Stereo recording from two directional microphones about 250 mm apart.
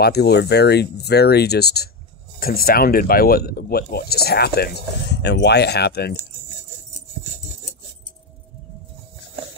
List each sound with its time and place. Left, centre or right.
0.0 s speech: left